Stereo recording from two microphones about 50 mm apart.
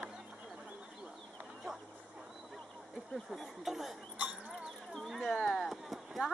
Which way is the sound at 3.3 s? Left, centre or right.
Centre.